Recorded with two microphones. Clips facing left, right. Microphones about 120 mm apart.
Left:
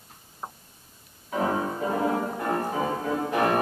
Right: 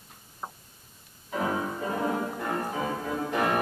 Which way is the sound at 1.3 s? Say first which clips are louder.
Left 3 dB; 30° left (ahead or behind).